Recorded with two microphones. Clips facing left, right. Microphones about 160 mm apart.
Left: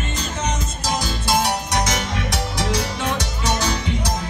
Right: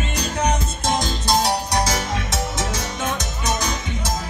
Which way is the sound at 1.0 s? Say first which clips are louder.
Left 2 dB; 40° right (ahead or behind).